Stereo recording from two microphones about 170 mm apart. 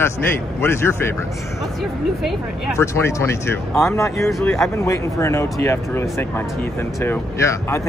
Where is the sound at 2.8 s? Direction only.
15° left (ahead or behind).